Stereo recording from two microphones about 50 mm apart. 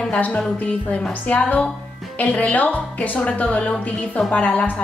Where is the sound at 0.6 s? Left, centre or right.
Left.